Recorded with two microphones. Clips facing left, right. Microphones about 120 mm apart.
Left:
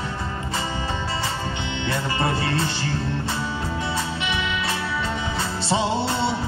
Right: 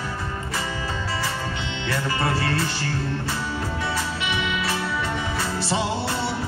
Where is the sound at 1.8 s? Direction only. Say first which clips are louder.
Even; 25° left (ahead or behind).